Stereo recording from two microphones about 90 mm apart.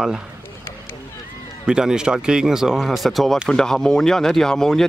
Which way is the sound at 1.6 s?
10° right (ahead or behind).